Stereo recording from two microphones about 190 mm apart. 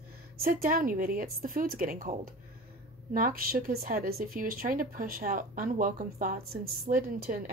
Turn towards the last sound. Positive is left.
turn(degrees=-50)  # may be behind; listen again after turning